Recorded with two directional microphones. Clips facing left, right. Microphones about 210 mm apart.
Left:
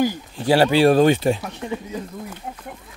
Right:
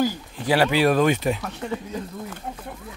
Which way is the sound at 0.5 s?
30° left (ahead or behind).